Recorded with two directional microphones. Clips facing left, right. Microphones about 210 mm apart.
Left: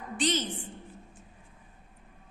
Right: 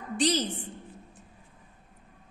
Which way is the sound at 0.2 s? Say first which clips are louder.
Right 3 dB; 35° right (ahead or behind).